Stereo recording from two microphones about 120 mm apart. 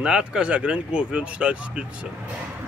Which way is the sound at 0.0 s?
10° right (ahead or behind).